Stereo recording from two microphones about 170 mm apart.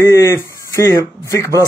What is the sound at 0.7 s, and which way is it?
Speech, 20° left (ahead or behind).